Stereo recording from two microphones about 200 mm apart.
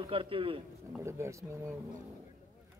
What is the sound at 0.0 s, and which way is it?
Speech, 25° right (ahead or behind).